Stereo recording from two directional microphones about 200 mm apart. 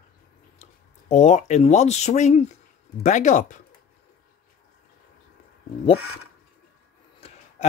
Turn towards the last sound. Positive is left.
turn(degrees=30)  # may be behind; listen again after turning